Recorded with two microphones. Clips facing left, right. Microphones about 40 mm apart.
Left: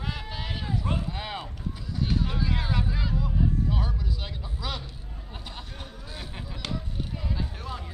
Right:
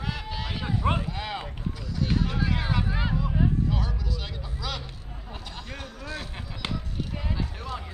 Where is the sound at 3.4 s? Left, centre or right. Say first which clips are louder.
Right 2 dB; right.